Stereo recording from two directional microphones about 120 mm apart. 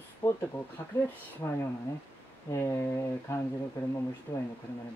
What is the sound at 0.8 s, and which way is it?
Speech, 30° left (ahead or behind).